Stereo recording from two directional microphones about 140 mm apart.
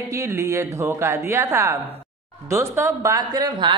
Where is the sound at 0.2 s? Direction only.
20° right (ahead or behind).